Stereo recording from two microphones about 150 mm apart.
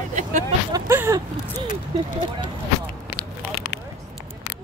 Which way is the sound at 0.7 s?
20° right (ahead or behind).